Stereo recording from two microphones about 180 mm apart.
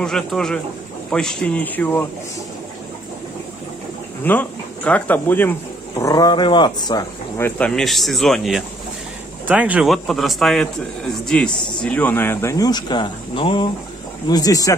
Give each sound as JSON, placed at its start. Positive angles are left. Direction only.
{"t": 0.0, "sound": "speech", "side_deg": 5}
{"t": 4.2, "sound": "speech", "side_deg": 10}